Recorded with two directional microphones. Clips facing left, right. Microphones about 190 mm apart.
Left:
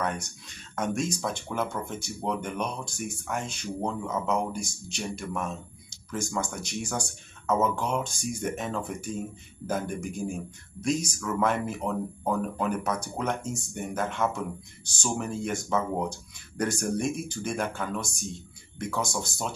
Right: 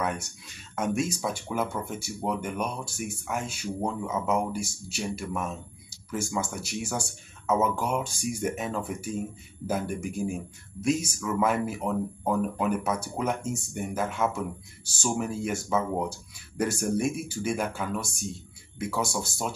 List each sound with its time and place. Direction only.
0.0 s speech: 5° right (ahead or behind)